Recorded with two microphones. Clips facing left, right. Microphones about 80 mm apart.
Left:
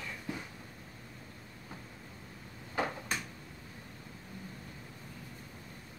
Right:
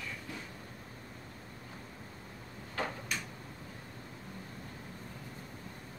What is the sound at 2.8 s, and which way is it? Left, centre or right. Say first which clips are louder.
Drawer open or close: left 3 dB; centre.